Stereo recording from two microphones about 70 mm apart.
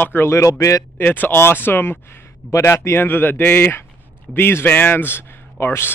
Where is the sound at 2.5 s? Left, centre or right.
Left.